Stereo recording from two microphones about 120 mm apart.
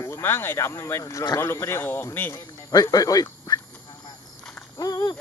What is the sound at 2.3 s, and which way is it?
Speech, 30° left (ahead or behind).